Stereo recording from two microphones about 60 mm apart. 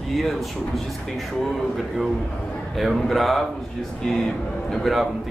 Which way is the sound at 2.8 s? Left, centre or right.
Centre.